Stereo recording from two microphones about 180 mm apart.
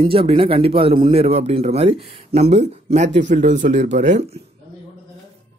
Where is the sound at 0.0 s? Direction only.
30° right (ahead or behind).